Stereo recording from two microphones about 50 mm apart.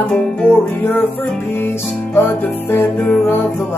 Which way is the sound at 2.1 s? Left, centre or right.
Left.